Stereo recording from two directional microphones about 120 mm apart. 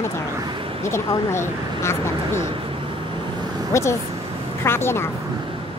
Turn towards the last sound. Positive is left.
turn(degrees=20)  # may be behind; listen again after turning